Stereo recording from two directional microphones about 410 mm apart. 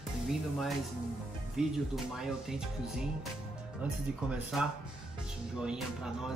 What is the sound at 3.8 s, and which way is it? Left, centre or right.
Speech, centre.